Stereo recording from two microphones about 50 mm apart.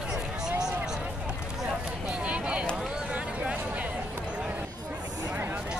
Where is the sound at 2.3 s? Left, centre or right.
Right.